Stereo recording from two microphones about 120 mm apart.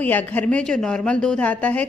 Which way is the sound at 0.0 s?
15° left (ahead or behind).